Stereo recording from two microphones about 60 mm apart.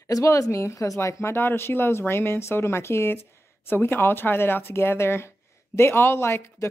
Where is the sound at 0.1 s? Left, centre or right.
Left.